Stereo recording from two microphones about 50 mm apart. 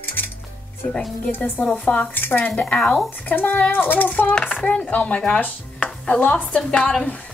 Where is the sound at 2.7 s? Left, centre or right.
Centre.